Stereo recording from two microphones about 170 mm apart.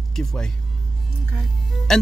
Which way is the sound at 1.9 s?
Centre (ahead or behind).